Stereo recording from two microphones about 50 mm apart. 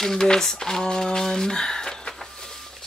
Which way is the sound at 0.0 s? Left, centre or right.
Centre.